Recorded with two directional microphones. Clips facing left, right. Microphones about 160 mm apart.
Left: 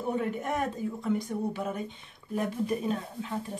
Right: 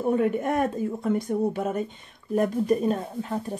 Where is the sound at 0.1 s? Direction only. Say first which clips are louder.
Right 6 dB; 55° right (ahead or behind).